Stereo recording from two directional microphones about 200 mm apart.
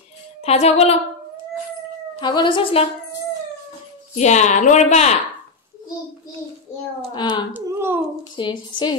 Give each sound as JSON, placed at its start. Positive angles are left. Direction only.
{"t": 0.4, "sound": "a woman's voice", "side_deg": 30}
{"t": 2.1, "sound": "speech", "side_deg": 25}
{"t": 4.2, "sound": "a woman's voice", "side_deg": 35}
{"t": 7.2, "sound": "speech", "side_deg": 25}
{"t": 7.5, "sound": "a sound", "side_deg": -10}
{"t": 8.2, "sound": "a woman's voice", "side_deg": 25}